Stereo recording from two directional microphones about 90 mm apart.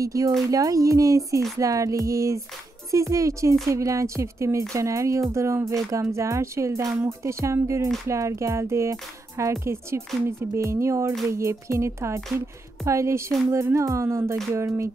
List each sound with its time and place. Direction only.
0.0 s speech: 40° right (ahead or behind)